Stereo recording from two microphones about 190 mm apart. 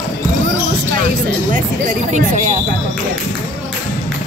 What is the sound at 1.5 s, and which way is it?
Speech, 45° right (ahead or behind).